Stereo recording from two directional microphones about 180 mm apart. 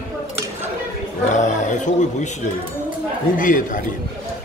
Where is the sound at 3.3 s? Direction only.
45° left (ahead or behind).